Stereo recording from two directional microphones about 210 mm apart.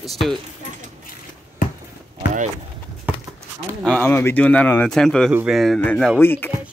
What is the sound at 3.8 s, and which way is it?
Speech, 5° left (ahead or behind).